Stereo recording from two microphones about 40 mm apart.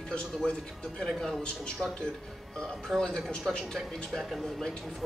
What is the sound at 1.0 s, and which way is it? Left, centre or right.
Speech, centre.